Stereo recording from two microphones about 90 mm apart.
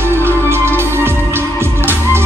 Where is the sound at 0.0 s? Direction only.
25° right (ahead or behind).